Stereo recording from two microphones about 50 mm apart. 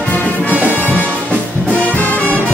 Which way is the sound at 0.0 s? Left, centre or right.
Left.